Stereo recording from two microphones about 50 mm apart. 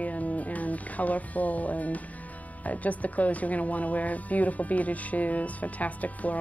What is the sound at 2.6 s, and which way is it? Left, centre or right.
Speech, left.